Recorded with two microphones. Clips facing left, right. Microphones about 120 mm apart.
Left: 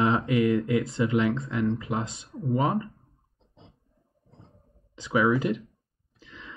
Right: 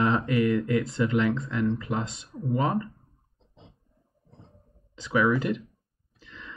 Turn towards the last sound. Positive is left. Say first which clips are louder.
# even
turn(degrees=20)  # may be behind; listen again after turning